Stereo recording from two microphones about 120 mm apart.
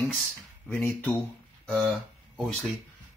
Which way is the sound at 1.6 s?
5° left (ahead or behind).